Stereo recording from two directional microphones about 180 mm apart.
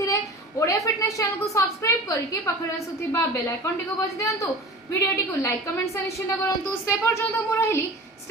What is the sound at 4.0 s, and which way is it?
A woman's voice, 15° left (ahead or behind).